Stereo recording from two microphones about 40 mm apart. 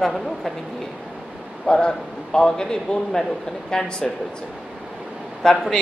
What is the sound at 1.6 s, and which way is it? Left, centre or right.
A woman's voice, left.